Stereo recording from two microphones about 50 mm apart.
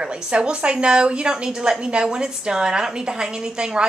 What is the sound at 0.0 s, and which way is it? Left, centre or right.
A woman's voice, centre.